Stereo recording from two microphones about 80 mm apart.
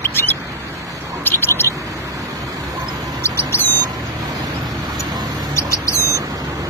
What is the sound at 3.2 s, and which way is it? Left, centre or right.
Bird, left.